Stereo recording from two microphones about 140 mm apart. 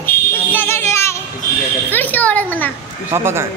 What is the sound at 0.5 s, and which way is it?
Child singing, 15° left (ahead or behind).